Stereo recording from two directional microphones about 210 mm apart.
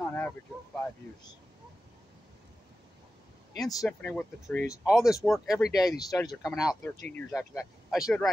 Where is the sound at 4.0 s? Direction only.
5° left (ahead or behind).